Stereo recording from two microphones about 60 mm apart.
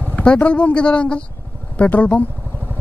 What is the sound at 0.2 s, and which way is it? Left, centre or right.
Speech, centre.